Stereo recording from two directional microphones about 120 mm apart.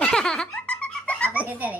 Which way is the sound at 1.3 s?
15° right (ahead or behind).